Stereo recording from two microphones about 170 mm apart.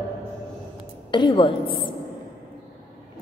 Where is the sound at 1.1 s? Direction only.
25° left (ahead or behind).